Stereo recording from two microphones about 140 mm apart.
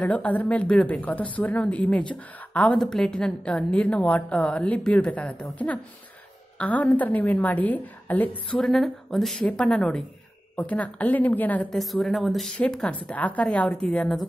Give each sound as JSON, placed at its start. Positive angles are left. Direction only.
{"t": 0.0, "sound": "a woman's voice", "side_deg": 10}
{"t": 11.8, "sound": "a woman's voice", "side_deg": 0}